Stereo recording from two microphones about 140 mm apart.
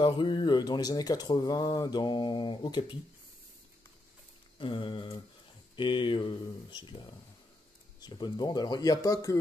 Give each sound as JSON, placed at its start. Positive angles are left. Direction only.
{"t": 0.0, "sound": "speech", "side_deg": 35}
{"t": 4.6, "sound": "speech", "side_deg": 35}